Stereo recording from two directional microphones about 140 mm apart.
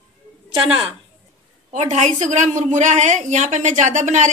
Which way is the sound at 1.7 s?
55° right (ahead or behind).